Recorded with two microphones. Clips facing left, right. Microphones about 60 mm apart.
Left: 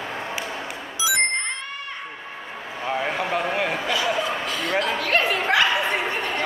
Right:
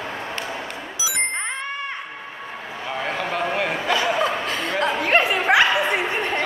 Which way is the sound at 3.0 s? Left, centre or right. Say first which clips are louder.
Right 2 dB; centre.